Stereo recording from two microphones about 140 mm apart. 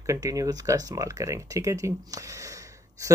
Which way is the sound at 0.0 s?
25° right (ahead or behind).